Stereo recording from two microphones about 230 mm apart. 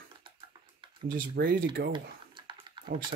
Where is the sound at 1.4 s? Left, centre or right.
Right.